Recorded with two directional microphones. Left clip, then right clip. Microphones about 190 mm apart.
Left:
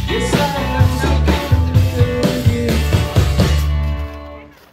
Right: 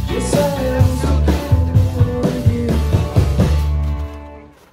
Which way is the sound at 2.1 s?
35° left (ahead or behind).